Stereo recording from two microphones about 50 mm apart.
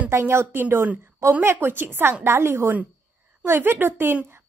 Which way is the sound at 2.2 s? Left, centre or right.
Right.